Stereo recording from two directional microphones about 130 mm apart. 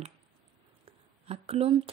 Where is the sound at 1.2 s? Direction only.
50° right (ahead or behind).